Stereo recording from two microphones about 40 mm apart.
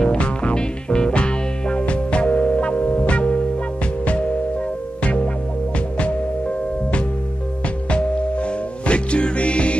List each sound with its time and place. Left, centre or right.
0.0 s music: left
5.0 s music: left
7.9 s music: left